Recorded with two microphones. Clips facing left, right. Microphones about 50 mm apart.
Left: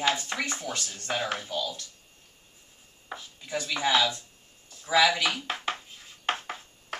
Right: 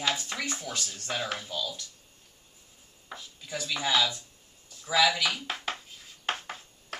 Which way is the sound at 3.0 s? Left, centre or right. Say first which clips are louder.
Left 3 dB; centre.